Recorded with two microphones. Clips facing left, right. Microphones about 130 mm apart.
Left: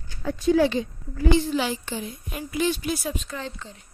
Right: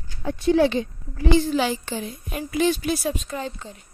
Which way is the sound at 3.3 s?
15° right (ahead or behind).